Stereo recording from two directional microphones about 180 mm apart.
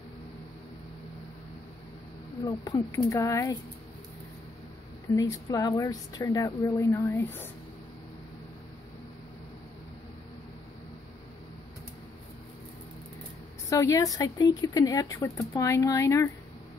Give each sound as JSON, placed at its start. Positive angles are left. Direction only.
{"t": 2.4, "sound": "speech", "side_deg": 20}
{"t": 5.1, "sound": "speech", "side_deg": 20}
{"t": 13.7, "sound": "speech", "side_deg": 15}